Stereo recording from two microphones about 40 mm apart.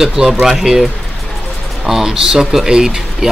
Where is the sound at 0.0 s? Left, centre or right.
Centre.